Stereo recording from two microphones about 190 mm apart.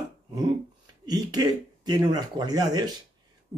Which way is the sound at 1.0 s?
20° right (ahead or behind).